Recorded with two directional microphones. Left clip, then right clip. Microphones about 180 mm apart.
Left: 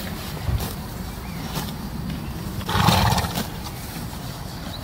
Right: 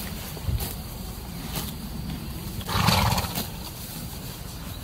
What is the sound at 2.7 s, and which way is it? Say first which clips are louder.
Roar: left 4 dB; 25° left (ahead or behind).